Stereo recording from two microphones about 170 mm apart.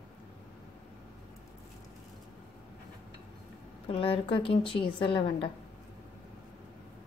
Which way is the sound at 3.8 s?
35° left (ahead or behind).